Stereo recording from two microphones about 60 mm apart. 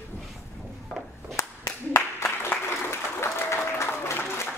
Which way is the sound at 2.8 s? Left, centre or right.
Left.